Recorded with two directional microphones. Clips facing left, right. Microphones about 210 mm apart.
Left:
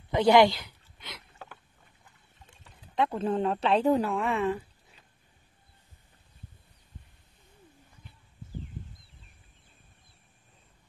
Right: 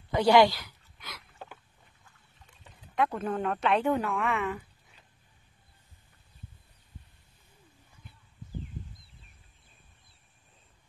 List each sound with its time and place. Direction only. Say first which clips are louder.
0.1 s speech: left 1 dB; 20° left (ahead or behind)
3.2 s speech: left 3 dB; 30° left (ahead or behind)